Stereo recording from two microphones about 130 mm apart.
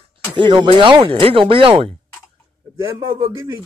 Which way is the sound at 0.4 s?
40° right (ahead or behind).